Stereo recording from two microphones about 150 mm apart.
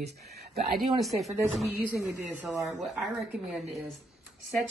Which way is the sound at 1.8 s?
10° right (ahead or behind).